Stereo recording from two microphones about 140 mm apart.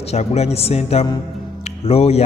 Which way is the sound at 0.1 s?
50° left (ahead or behind).